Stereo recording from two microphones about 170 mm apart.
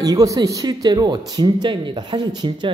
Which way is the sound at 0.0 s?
20° right (ahead or behind).